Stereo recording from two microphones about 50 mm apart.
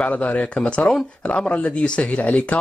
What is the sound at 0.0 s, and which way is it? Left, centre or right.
Speech, left.